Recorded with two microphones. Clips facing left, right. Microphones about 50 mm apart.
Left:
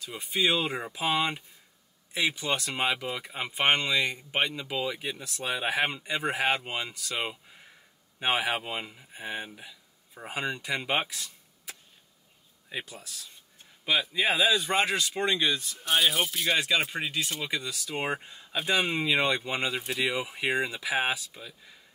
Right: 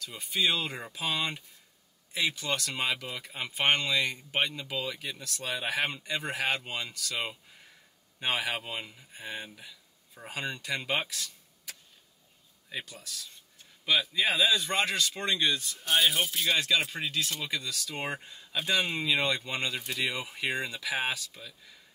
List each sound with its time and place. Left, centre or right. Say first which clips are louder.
0.0 s speech: left 2 dB; centre